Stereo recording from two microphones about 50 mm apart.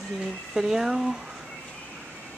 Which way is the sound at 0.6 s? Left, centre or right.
Centre.